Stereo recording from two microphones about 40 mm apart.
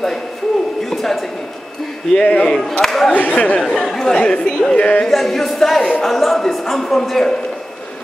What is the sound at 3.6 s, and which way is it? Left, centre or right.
Speech, centre.